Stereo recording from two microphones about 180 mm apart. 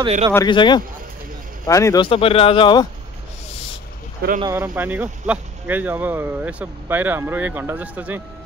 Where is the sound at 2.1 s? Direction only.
30° left (ahead or behind).